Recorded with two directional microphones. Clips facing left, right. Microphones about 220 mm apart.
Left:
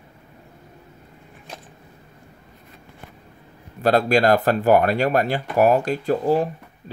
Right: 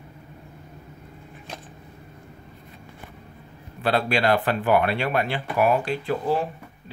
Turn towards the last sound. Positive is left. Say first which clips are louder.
# left 5 dB
turn(degrees=40)  # may be behind; listen again after turning